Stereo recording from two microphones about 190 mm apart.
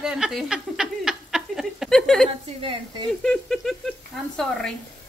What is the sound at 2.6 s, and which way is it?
Sizzle, 25° right (ahead or behind).